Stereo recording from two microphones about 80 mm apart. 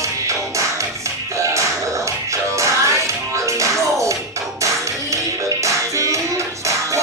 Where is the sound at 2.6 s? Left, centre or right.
Right.